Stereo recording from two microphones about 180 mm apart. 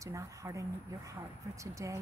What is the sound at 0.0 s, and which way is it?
A woman's voice, 15° right (ahead or behind).